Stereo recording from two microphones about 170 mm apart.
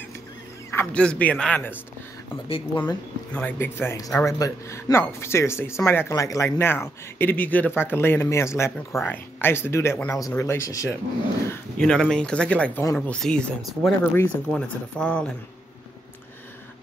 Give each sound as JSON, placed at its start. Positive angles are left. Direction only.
{"t": 0.7, "sound": "speech", "side_deg": 5}
{"t": 2.4, "sound": "speech", "side_deg": 35}
{"t": 3.3, "sound": "speech", "side_deg": 10}
{"t": 11.8, "sound": "speech", "side_deg": 5}